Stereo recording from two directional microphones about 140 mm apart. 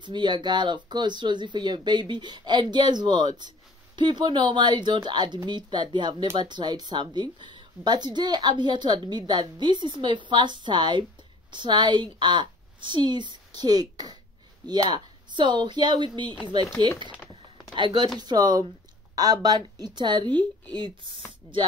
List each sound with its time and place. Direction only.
0.0 s a woman's voice: 35° right (ahead or behind)
17.7 s a woman's voice: 30° right (ahead or behind)